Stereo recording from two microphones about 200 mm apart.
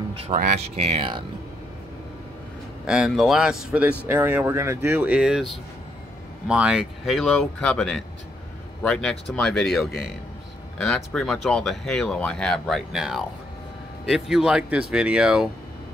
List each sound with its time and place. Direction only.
0.3 s speech: 40° right (ahead or behind)
0.7 s speech: 30° right (ahead or behind)
2.9 s speech: centre (ahead or behind)